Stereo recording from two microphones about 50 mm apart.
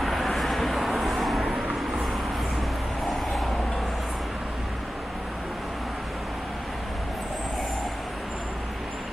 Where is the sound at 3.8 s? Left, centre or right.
Centre.